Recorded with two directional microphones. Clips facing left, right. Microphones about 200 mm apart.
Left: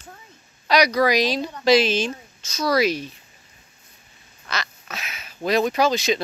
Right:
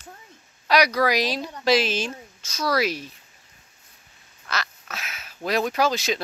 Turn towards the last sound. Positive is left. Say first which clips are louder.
# left 3 dB
turn(degrees=-5)  # may be behind; listen again after turning